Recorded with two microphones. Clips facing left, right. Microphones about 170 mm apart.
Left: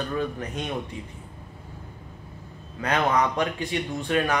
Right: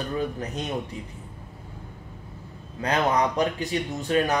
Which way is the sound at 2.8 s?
35° right (ahead or behind).